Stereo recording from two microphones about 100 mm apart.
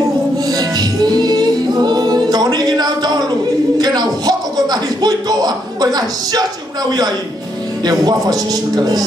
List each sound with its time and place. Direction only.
0.5 s music: 40° right (ahead or behind)
3.7 s a sound: 40° right (ahead or behind)
6.9 s a man's voice: 40° right (ahead or behind)